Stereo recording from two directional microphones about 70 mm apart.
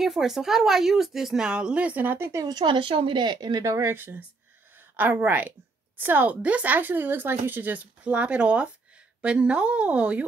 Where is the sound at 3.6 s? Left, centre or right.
Right.